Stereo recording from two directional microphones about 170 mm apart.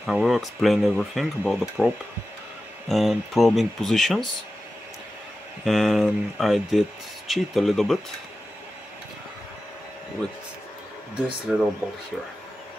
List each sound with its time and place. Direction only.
0.0 s speech: centre (ahead or behind)
5.7 s speech: centre (ahead or behind)
11.5 s speech: 5° right (ahead or behind)